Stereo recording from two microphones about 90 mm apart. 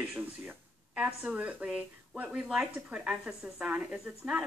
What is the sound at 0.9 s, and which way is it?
A woman's voice, 15° right (ahead or behind).